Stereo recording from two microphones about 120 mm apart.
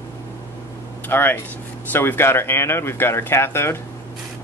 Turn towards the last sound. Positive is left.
turn(degrees=20)  # may be behind; listen again after turning